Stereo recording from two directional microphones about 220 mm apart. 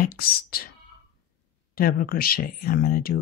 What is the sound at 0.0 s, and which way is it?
Speech, 40° left (ahead or behind).